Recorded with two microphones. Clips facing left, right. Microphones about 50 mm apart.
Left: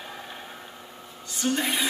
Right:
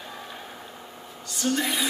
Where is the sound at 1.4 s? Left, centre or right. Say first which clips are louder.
Even; centre.